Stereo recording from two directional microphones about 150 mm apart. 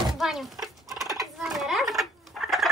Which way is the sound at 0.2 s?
Centre (ahead or behind).